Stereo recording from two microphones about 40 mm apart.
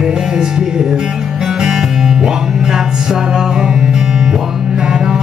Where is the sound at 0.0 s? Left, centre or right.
Centre.